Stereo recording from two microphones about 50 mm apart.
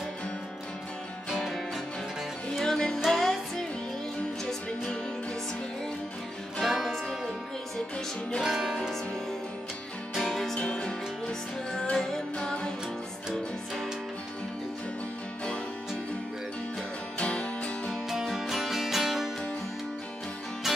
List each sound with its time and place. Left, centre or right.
2.5 s music: centre
6.6 s music: centre
8.4 s music: centre
10.1 s music: centre
10.5 s music: centre
17.2 s music: left
18.1 s music: centre